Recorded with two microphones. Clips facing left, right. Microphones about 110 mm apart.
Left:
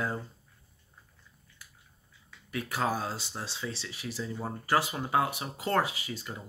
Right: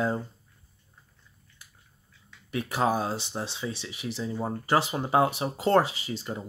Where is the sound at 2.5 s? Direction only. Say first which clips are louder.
Right 5 dB; 25° right (ahead or behind).